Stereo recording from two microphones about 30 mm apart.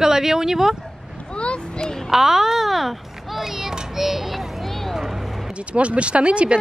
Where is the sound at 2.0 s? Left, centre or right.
Centre.